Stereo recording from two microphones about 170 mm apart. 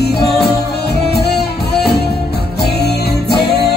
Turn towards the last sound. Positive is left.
turn(degrees=70)  # may be behind; listen again after turning